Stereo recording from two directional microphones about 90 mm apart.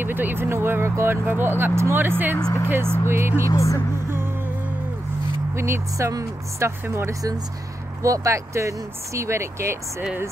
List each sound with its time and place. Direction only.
0.0 s speech: 25° right (ahead or behind)
3.5 s speech: 35° left (ahead or behind)
5.5 s speech: 30° right (ahead or behind)